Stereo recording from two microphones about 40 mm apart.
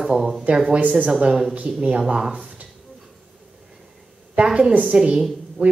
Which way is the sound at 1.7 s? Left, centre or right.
Right.